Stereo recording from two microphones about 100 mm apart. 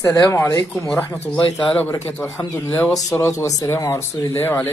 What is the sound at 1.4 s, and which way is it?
Speech, 60° left (ahead or behind).